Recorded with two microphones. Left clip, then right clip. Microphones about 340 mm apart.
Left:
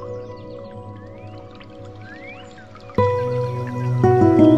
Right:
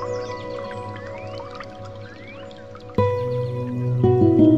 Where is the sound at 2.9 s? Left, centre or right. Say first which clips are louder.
Left 3 dB; centre.